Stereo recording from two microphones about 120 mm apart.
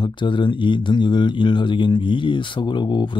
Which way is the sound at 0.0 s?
40° left (ahead or behind).